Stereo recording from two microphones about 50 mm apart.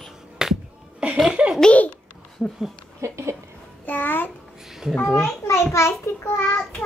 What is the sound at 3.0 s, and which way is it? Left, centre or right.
Speech, right.